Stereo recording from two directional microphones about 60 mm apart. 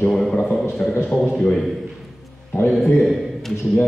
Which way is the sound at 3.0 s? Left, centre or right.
Centre.